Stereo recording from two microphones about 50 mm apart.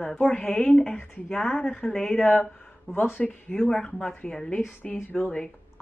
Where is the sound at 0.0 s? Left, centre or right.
Left.